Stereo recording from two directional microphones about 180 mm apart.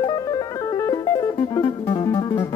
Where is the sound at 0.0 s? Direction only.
20° left (ahead or behind).